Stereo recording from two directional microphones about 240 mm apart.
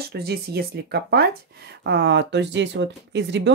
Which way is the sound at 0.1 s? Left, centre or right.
Right.